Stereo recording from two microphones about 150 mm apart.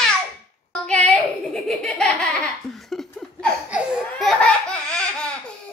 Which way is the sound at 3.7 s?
Centre (ahead or behind).